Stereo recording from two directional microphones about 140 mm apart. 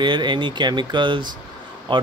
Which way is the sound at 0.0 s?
35° right (ahead or behind).